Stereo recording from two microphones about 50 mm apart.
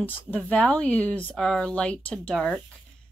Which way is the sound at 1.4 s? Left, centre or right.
Centre.